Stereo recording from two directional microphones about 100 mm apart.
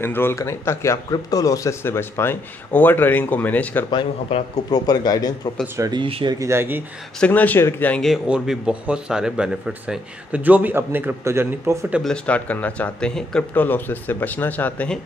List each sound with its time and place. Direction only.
0.0 s speech: 20° left (ahead or behind)
4.6 s a man's voice: 40° left (ahead or behind)
5.8 s speech: 45° right (ahead or behind)
6.4 s speech: 25° right (ahead or behind)
7.2 s speech: 15° left (ahead or behind)
8.3 s speech: 10° right (ahead or behind); by 11.9 s 25° right (ahead or behind)
12.0 s speech: 10° left (ahead or behind)